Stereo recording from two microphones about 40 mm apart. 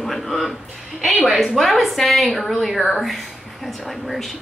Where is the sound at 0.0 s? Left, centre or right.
Centre.